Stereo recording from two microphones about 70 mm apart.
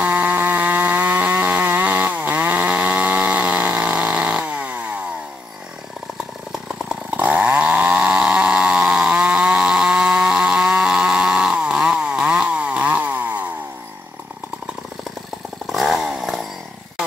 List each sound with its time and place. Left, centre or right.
0.0 s chainsaw: right
7.2 s chainsaw: right
15.6 s chainsaw: centre